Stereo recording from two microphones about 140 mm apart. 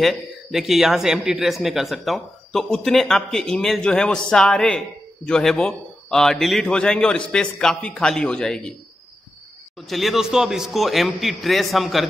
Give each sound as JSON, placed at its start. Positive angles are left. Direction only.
{"t": 0.0, "sound": "speech", "side_deg": 0}
{"t": 9.8, "sound": "speech", "side_deg": 0}